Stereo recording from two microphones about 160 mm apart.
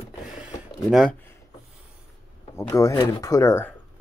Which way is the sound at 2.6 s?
20° left (ahead or behind).